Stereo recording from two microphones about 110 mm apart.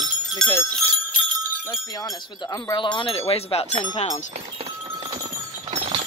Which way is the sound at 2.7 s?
45° left (ahead or behind).